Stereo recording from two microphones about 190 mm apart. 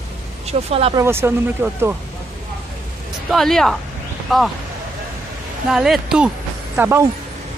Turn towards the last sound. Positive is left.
turn(degrees=-15)  # may be behind; listen again after turning